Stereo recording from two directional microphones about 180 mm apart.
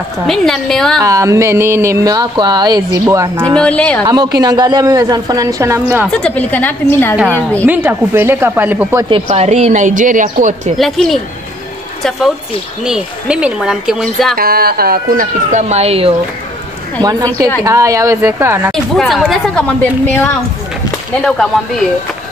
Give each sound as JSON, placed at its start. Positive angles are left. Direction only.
{"t": 0.3, "sound": "speech", "side_deg": 5}
{"t": 1.0, "sound": "speech", "side_deg": -20}
{"t": 3.5, "sound": "a woman's voice", "side_deg": 5}
{"t": 4.0, "sound": "a woman's voice", "side_deg": -20}
{"t": 6.0, "sound": "a woman's voice", "side_deg": 5}
{"t": 7.6, "sound": "speech", "side_deg": -10}
{"t": 9.1, "sound": "speech", "side_deg": -40}
{"t": 10.8, "sound": "speech", "side_deg": 0}
{"t": 12.8, "sound": "speech", "side_deg": -5}
{"t": 14.3, "sound": "speech", "side_deg": -55}
{"t": 15.7, "sound": "speech", "side_deg": -35}
{"t": 17.0, "sound": "a woman's voice", "side_deg": -20}
{"t": 18.7, "sound": "speech", "side_deg": 0}
{"t": 21.2, "sound": "speech", "side_deg": 0}